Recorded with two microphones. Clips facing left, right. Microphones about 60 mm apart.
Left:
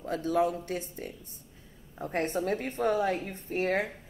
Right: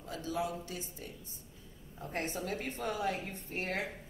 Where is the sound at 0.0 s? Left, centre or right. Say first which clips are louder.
Left 9 dB; left.